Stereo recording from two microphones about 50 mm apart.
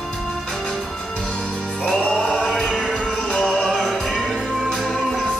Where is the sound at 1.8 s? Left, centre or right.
Centre.